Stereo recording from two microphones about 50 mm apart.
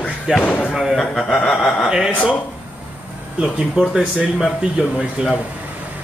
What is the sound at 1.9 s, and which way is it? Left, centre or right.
Speech, centre.